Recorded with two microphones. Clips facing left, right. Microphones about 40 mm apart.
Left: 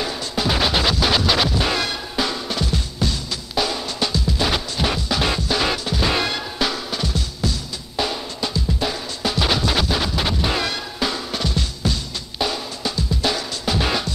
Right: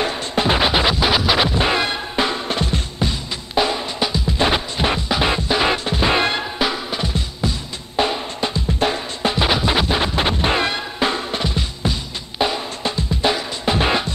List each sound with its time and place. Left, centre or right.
0.0 s music: right